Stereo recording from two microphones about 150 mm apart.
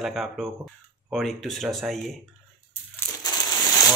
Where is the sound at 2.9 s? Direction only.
25° left (ahead or behind).